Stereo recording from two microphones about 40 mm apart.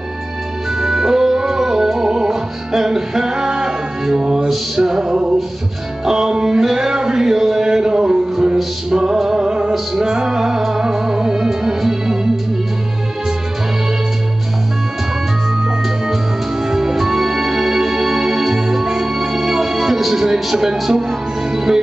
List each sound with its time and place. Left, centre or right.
0.7 s music: centre
6.6 s a sound: centre
7.6 s music: centre
16.6 s music: centre